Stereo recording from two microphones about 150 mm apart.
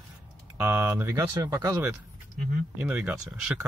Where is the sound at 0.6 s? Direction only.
10° right (ahead or behind).